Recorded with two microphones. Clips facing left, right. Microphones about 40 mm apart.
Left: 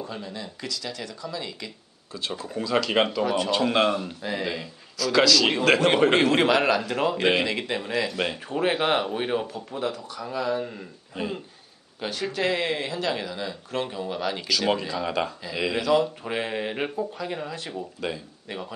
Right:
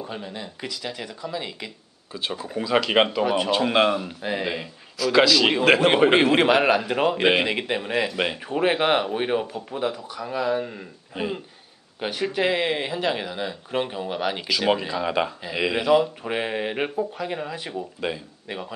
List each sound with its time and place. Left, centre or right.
0.0 s a man's voice: right; by 4.2 s centre
4.2 s a man's voice: right